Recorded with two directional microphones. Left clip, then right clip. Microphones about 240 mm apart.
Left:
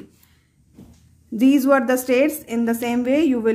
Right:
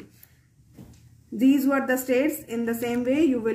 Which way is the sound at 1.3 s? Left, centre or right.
Left.